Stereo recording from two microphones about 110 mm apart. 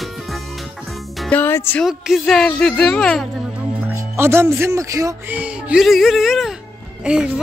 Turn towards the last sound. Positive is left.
turn(degrees=-10)  # may be behind; listen again after turning